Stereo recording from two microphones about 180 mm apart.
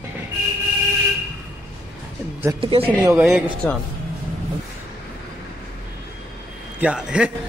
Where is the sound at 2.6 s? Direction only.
30° right (ahead or behind).